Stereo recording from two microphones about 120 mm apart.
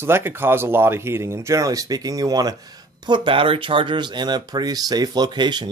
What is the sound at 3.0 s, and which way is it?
Speech, 40° right (ahead or behind).